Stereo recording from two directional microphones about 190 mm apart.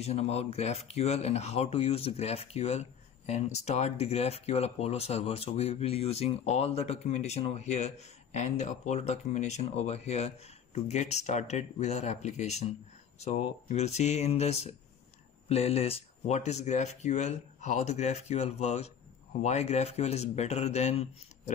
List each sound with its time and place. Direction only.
0.0 s speech: 35° left (ahead or behind)